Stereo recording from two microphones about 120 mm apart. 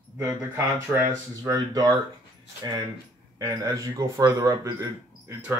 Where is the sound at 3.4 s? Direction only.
40° right (ahead or behind).